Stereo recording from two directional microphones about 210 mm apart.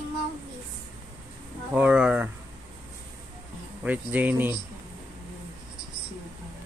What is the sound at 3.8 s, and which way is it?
Speech, 5° right (ahead or behind).